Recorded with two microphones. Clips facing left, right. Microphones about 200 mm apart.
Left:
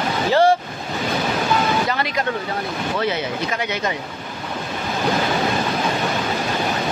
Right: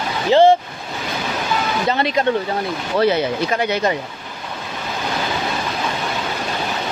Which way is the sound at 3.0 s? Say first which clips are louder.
Right 9 dB; 35° right (ahead or behind).